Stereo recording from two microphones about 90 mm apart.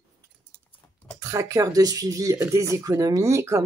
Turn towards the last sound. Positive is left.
turn(degrees=-35)  # may be behind; listen again after turning